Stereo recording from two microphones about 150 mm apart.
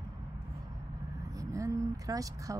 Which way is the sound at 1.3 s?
20° right (ahead or behind).